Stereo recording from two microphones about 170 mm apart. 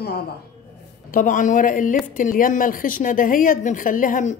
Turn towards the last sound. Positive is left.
turn(degrees=50)  # may be behind; listen again after turning